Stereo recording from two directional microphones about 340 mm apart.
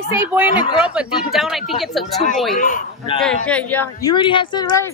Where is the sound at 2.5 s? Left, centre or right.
Left.